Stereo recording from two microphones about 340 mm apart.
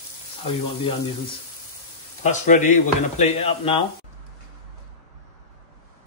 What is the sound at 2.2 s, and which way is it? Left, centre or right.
Speech, left.